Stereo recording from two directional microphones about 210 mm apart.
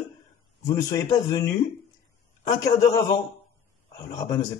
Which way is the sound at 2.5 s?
15° left (ahead or behind).